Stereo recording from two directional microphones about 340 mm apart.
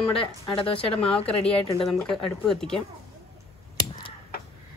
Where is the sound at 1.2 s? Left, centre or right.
Centre.